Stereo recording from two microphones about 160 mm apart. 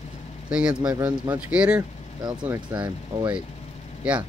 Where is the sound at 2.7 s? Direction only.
30° right (ahead or behind).